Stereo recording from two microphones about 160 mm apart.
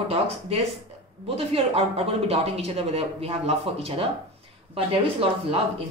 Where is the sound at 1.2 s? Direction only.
40° right (ahead or behind).